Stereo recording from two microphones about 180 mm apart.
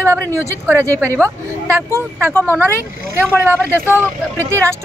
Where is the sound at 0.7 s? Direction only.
15° right (ahead or behind).